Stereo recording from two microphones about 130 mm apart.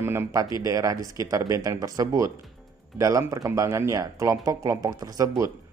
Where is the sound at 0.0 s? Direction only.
20° right (ahead or behind).